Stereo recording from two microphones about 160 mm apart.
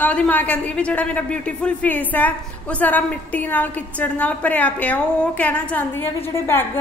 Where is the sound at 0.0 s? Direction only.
10° left (ahead or behind).